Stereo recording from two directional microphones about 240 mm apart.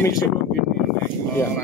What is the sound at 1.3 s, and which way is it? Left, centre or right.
Speech, centre.